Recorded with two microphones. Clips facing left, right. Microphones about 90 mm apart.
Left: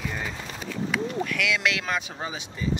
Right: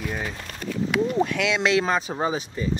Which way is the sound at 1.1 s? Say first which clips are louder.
Right 4 dB; 30° right (ahead or behind).